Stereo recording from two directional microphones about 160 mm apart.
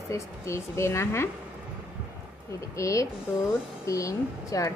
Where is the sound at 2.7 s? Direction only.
20° left (ahead or behind).